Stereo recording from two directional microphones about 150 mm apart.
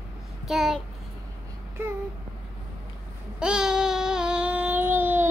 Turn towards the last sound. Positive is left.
turn(degrees=-10)  # may be behind; listen again after turning